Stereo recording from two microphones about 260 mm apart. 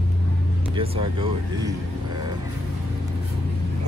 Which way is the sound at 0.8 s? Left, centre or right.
Centre.